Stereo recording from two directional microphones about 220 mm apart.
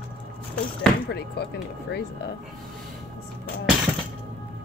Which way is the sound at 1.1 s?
45° left (ahead or behind).